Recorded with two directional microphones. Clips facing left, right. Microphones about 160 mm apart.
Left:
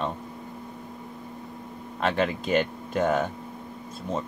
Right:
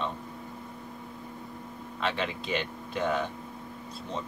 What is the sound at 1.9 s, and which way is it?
Speech, 45° left (ahead or behind).